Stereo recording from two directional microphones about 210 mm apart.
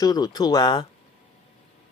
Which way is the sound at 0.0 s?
20° left (ahead or behind).